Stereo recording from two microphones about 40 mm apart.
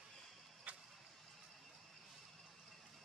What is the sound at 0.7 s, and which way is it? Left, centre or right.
Vehicle, right.